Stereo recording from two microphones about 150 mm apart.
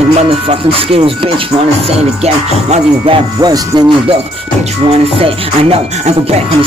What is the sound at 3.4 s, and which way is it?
Speech, 30° right (ahead or behind).